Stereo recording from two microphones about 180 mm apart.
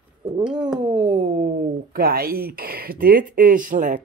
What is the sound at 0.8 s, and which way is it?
Speech, 30° right (ahead or behind).